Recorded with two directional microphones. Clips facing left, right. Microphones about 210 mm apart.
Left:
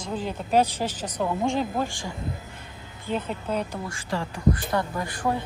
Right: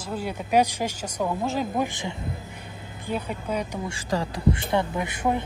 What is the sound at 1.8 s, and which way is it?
Speech, 20° right (ahead or behind).